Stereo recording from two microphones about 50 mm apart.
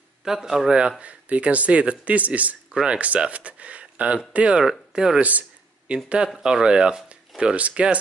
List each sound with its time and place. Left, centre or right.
0.2 s speech: centre; by 2.5 s right
2.7 s speech: centre
4.6 s speech: centre